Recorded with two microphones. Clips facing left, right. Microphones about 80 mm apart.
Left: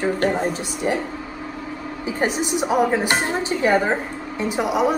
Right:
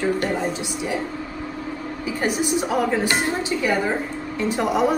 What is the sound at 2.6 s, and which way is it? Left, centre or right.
Speech, centre.